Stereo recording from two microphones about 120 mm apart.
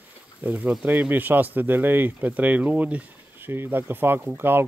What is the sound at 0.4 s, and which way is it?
Speech, 15° right (ahead or behind).